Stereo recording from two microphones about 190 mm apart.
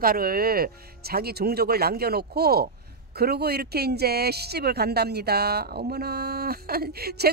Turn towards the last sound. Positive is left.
turn(degrees=-55)  # may be behind; listen again after turning